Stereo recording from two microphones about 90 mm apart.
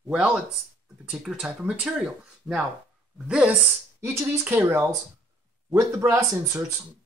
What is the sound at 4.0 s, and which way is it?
Speech, 25° right (ahead or behind).